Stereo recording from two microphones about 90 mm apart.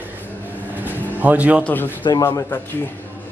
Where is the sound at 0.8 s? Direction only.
15° right (ahead or behind).